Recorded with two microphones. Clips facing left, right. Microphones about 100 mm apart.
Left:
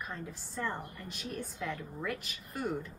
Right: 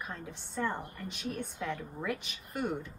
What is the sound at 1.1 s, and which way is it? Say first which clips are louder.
Speech: right 2 dB; 65° right (ahead or behind).